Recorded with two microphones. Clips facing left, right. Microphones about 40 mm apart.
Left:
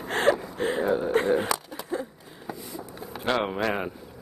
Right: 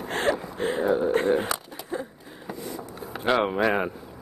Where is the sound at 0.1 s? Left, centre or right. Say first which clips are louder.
Left 3 dB; left.